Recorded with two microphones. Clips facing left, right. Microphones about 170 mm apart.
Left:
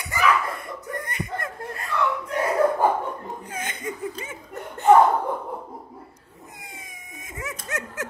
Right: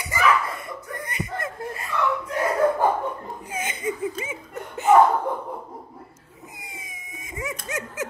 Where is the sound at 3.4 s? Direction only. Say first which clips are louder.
Right 7 dB; 5° right (ahead or behind).